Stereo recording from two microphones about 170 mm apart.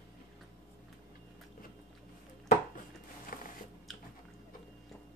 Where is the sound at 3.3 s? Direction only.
55° left (ahead or behind).